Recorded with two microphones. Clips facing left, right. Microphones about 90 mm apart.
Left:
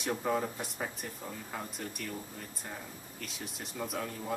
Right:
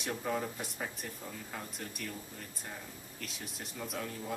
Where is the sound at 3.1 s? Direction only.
Centre (ahead or behind).